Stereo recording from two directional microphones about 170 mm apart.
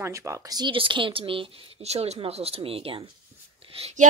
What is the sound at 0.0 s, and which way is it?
A woman's voice, 20° right (ahead or behind).